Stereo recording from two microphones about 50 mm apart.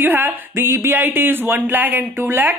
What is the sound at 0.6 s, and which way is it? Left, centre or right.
Music, right.